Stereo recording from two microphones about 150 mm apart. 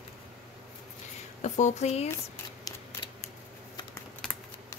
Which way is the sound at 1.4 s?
50° left (ahead or behind).